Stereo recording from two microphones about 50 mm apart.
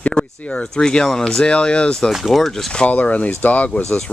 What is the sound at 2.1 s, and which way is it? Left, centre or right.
Speech, centre.